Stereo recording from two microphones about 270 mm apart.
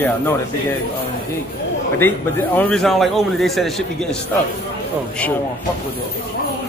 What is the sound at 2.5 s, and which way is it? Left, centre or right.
A man's voice, centre.